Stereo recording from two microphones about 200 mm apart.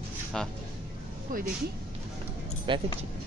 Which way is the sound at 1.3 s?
45° right (ahead or behind).